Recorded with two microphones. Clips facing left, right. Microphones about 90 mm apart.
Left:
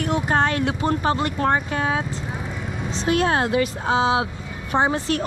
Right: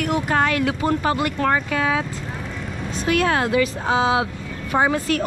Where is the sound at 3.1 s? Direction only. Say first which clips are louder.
Right 1 dB; 30° left (ahead or behind).